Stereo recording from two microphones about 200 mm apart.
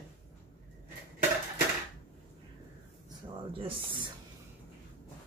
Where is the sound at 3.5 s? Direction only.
25° right (ahead or behind).